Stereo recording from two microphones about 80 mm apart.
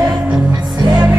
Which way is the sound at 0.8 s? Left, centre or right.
Right.